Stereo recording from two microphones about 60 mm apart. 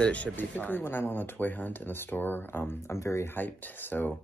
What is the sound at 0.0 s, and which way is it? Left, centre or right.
Speech, left.